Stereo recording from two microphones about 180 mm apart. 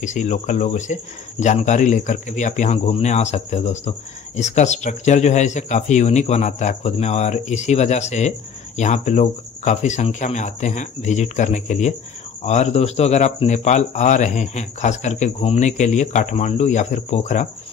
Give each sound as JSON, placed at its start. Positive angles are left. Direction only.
{"t": 0.0, "sound": "speech", "side_deg": 40}